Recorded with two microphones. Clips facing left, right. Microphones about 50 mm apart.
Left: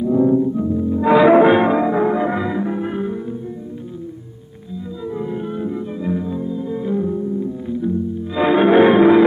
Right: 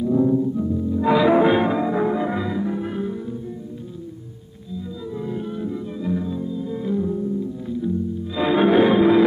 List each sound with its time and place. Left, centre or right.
0.0 s music: left
5.1 s music: left